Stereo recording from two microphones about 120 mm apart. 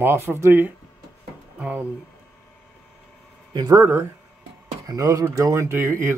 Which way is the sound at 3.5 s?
30° right (ahead or behind).